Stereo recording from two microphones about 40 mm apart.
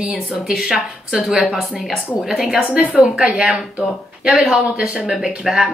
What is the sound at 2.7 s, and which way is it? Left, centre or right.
A woman's voice, right.